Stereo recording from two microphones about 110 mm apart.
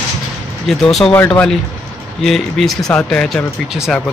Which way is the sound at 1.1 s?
15° left (ahead or behind).